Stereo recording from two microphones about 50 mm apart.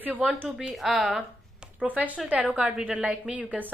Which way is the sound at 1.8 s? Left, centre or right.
Right.